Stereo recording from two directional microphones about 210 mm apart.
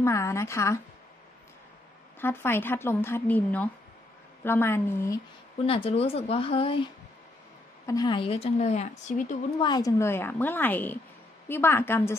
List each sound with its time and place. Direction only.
0.0 s speech: 15° left (ahead or behind)
2.1 s speech: 10° left (ahead or behind)
5.6 s speech: 25° left (ahead or behind)
9.6 s speech: 20° left (ahead or behind)